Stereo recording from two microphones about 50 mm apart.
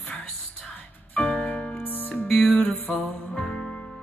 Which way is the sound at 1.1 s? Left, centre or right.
Left.